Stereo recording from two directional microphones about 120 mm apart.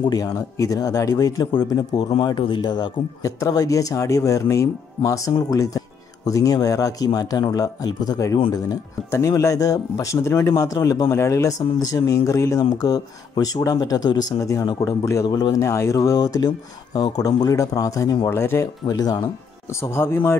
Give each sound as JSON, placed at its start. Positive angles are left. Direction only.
{"t": 0.0, "sound": "speech", "side_deg": 30}
{"t": 15.2, "sound": "speech", "side_deg": 35}
{"t": 18.9, "sound": "speech", "side_deg": 30}
{"t": 19.8, "sound": "speech", "side_deg": 20}